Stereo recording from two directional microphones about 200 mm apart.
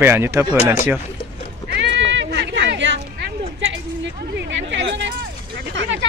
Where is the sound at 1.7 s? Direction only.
60° right (ahead or behind).